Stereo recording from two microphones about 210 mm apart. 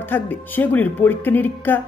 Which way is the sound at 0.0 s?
10° left (ahead or behind).